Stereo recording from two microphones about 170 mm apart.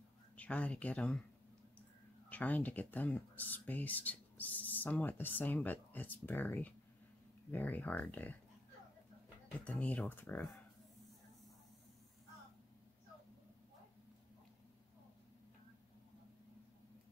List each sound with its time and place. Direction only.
0.4 s speech: 10° left (ahead or behind)
9.7 s speech: 10° left (ahead or behind)